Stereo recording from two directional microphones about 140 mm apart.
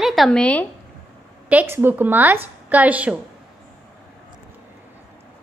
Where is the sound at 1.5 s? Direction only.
15° right (ahead or behind).